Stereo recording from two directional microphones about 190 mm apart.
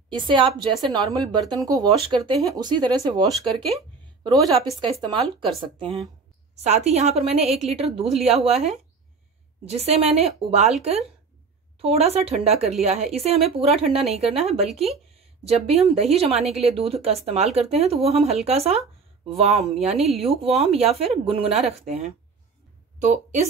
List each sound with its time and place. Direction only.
0.7 s speech: 25° right (ahead or behind)
9.7 s speech: 30° right (ahead or behind)
14.7 s speech: centre (ahead or behind)
15.4 s a woman's voice: 30° right (ahead or behind)